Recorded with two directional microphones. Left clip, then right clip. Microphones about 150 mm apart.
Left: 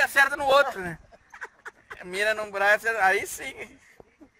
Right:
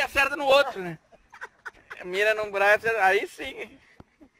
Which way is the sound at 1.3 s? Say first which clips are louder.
Even; 35° left (ahead or behind).